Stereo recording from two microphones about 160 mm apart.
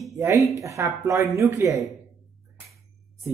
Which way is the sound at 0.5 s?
20° right (ahead or behind).